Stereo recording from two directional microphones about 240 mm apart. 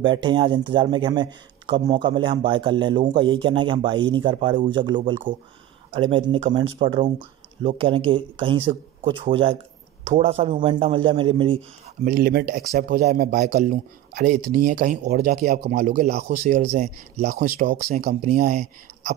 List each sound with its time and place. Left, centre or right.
0.0 s speech: centre
12.0 s a man's voice: right